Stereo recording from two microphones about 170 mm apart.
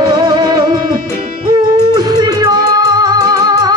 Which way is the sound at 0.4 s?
20° right (ahead or behind).